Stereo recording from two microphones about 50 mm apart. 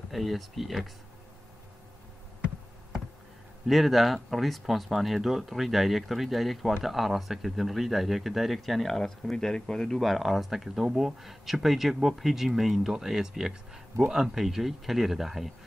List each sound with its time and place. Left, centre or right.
0.1 s speech: centre
3.6 s speech: centre